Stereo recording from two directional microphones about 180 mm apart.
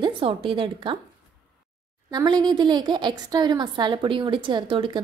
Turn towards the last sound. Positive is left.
turn(degrees=-25)  # may be behind; listen again after turning